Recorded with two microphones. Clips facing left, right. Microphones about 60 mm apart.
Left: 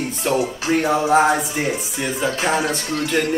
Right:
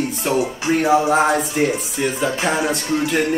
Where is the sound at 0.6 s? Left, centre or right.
Centre.